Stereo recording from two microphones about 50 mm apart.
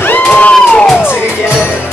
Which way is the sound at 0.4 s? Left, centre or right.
Left.